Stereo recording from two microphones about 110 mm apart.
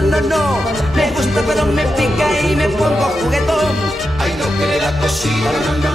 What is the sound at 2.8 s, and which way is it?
Speech, centre (ahead or behind).